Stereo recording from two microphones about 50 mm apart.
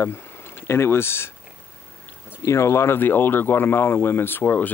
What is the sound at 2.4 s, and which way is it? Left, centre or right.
Speech, left.